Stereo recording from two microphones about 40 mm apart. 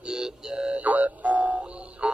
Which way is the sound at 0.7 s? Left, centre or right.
Right.